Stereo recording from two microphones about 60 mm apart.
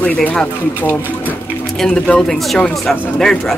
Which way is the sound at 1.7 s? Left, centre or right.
Centre.